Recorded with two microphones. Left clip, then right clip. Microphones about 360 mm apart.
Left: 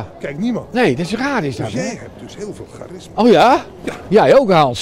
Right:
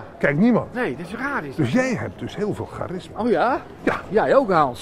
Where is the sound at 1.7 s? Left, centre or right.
Right.